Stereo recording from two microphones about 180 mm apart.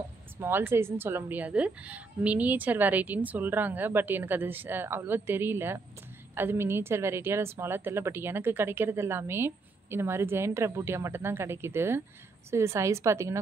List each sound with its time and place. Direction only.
0.4 s a woman's voice: 10° right (ahead or behind)